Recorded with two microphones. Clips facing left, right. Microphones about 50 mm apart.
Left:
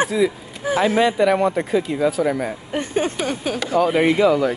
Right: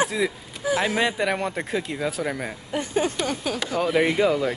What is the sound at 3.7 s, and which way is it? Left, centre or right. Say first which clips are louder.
Speech: left 8 dB; left.